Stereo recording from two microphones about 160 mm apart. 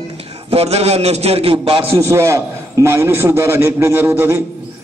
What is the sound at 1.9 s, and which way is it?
A man's voice, 15° right (ahead or behind).